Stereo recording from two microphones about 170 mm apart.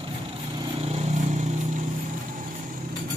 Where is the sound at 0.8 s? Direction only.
40° right (ahead or behind).